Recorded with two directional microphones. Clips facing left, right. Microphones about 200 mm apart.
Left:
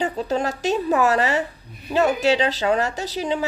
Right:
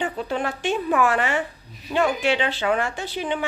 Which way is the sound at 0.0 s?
40° left (ahead or behind).